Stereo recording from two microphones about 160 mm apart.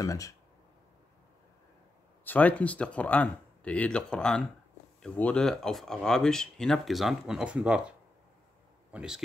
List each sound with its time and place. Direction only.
0.0 s speech: 20° left (ahead or behind)
2.2 s speech: 10° left (ahead or behind); by 7.8 s 5° right (ahead or behind)
8.9 s speech: 5° right (ahead or behind)